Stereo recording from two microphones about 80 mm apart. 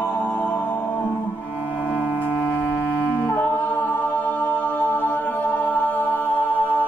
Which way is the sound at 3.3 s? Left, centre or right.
Left.